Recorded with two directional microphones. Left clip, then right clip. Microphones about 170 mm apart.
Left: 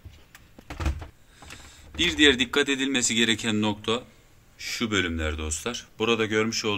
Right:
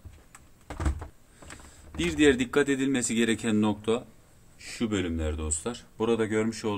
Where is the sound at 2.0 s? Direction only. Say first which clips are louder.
Left 3 dB; 40° right (ahead or behind).